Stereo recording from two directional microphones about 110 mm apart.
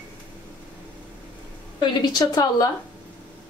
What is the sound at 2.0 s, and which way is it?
Speech, 35° left (ahead or behind).